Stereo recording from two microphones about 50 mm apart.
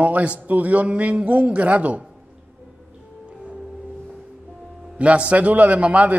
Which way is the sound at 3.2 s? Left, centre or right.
Right.